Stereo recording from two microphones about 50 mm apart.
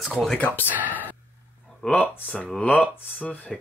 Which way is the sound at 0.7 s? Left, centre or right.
Right.